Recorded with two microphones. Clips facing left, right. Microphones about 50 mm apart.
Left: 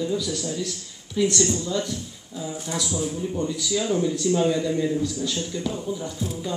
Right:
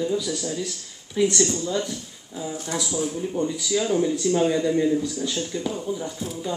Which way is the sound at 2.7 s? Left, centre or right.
Centre.